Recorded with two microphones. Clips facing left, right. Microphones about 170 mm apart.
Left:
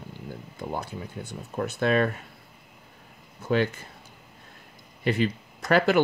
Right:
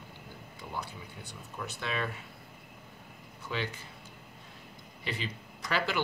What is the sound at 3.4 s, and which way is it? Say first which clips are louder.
Speech: left 12 dB; 50° left (ahead or behind).